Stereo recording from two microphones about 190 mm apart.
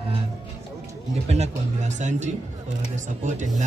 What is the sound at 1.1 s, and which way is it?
Speech, 35° right (ahead or behind).